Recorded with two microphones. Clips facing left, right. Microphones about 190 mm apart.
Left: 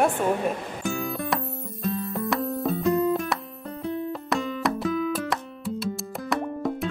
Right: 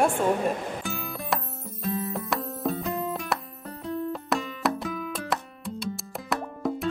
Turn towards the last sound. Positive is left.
turn(degrees=0)  # may be behind; listen again after turning